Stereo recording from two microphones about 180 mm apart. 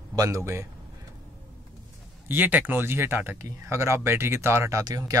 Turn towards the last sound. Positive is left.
turn(degrees=-20)  # may be behind; listen again after turning